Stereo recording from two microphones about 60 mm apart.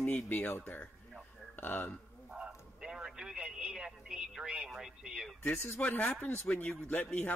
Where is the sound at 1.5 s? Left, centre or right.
Left.